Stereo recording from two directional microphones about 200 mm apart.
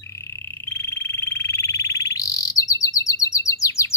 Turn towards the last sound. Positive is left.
turn(degrees=15)  # may be behind; listen again after turning